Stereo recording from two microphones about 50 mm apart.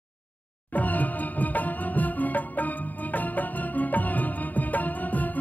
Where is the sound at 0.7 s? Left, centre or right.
Left.